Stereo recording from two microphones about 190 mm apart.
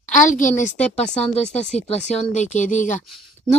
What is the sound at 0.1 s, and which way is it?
Speech, 40° left (ahead or behind).